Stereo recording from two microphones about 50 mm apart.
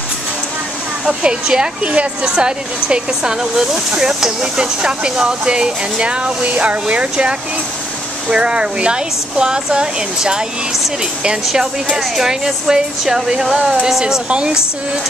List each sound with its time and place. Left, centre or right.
1.0 s speech: centre
12.0 s speech: centre